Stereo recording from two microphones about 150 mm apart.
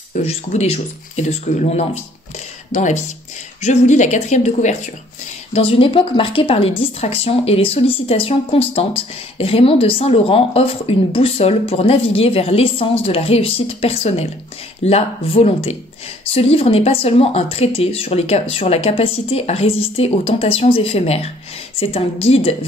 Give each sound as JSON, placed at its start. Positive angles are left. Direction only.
{"t": 0.1, "sound": "speech", "side_deg": 50}
{"t": 5.5, "sound": "speech", "side_deg": 40}